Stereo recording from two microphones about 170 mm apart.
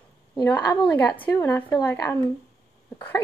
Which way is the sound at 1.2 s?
15° left (ahead or behind).